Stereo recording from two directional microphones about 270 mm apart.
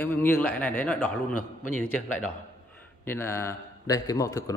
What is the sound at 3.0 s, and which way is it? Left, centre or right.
A man's voice, centre.